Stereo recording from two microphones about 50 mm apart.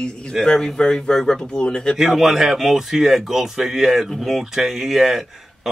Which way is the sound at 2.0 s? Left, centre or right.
Centre.